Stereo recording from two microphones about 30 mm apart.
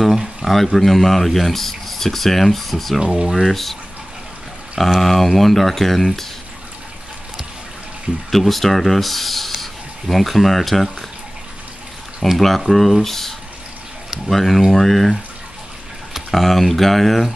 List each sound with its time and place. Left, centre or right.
0.5 s speech: centre
3.0 s speech: right
3.4 s speech: centre
5.0 s speech: centre
8.3 s speech: centre
12.4 s speech: centre
16.3 s speech: centre